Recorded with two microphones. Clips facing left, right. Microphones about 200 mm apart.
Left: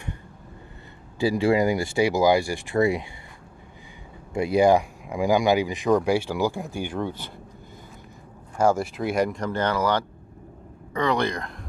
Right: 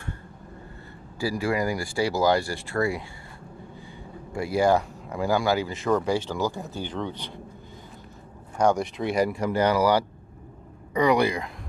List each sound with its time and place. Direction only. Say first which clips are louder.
1.2 s speech: left 5 dB; 25° left (ahead or behind)
4.3 s speech: left 3 dB; 20° left (ahead or behind)
8.5 s speech: left 1 dB; 5° left (ahead or behind)